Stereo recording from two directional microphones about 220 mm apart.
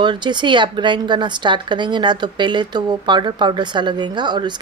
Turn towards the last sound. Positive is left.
turn(degrees=-20)  # may be behind; listen again after turning